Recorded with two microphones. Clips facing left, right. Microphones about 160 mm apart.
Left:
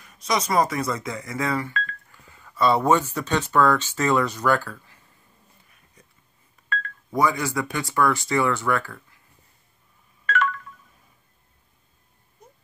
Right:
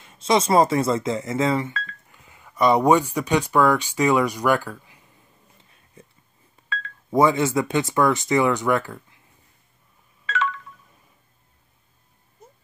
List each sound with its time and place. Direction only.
0.0 s speech: 25° right (ahead or behind)
6.0 s a sound: 25° right (ahead or behind)
7.1 s speech: 25° right (ahead or behind)